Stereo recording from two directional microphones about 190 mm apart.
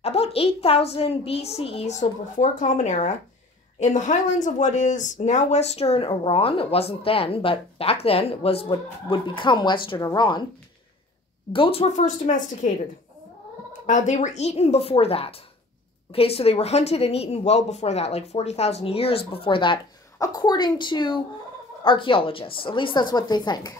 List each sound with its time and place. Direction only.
0.0 s a woman's voice: 30° left (ahead or behind)
11.5 s speech: 30° left (ahead or behind)
13.8 s a woman's voice: 40° left (ahead or behind); by 23.7 s 20° left (ahead or behind)